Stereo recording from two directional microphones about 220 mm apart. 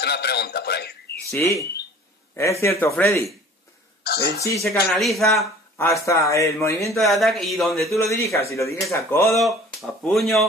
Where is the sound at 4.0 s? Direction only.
50° left (ahead or behind).